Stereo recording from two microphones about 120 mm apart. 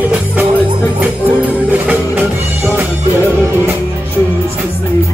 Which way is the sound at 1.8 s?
15° right (ahead or behind).